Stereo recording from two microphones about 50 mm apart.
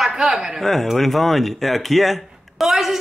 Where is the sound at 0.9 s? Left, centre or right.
Centre.